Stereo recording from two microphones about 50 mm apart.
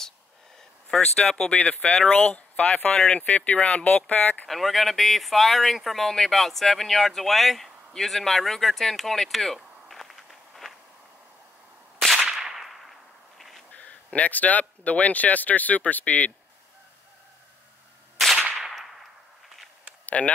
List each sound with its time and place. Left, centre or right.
0.8 s speech: centre
2.0 s speech: left
4.5 s speech: centre
9.8 s walk: centre
12.3 s whip: centre
13.7 s speech: left
18.2 s gunshot: centre
18.6 s a sound: centre
20.2 s speech: centre